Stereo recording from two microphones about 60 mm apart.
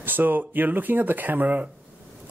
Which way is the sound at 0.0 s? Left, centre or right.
Right.